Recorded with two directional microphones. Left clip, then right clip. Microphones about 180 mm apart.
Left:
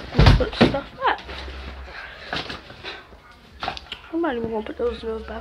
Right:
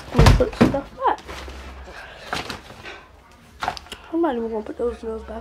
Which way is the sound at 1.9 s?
45° right (ahead or behind).